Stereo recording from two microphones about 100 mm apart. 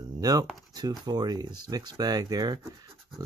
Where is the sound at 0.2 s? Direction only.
40° right (ahead or behind).